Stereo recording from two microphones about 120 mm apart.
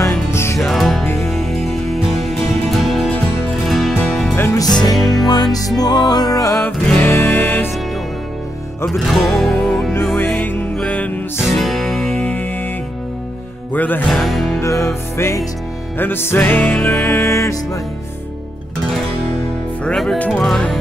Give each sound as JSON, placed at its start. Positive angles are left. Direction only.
{"t": 0.3, "sound": "music", "side_deg": 20}
{"t": 0.6, "sound": "music", "side_deg": 0}
{"t": 4.6, "sound": "music", "side_deg": 35}
{"t": 4.9, "sound": "music", "side_deg": 0}
{"t": 5.3, "sound": "music", "side_deg": 35}
{"t": 7.0, "sound": "music", "side_deg": 15}
{"t": 8.8, "sound": "music", "side_deg": 0}
{"t": 10.1, "sound": "music", "side_deg": 15}
{"t": 11.4, "sound": "music", "side_deg": 0}
{"t": 13.7, "sound": "music", "side_deg": 15}
{"t": 14.0, "sound": "music", "side_deg": 0}
{"t": 14.6, "sound": "music", "side_deg": 25}
{"t": 19.8, "sound": "music", "side_deg": 5}